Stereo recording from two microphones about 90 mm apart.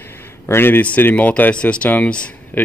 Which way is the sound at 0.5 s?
25° left (ahead or behind).